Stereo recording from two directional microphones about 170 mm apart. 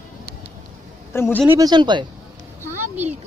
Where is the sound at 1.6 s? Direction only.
25° right (ahead or behind).